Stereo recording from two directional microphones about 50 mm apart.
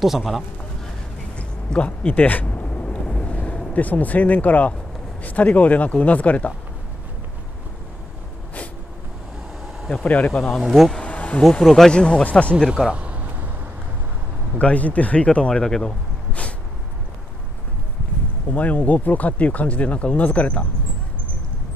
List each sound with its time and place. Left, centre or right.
0.0 s a man's voice: centre
1.3 s a sound: left
2.9 s vehicle: centre
3.3 s speech: left
10.0 s speech: left
10.6 s a man's voice: centre
11.1 s insect: left
11.6 s a man's voice: centre
11.9 s speech: centre
12.7 s a sound: centre
14.6 s speech: left
15.6 s speech: centre
18.5 s speech: left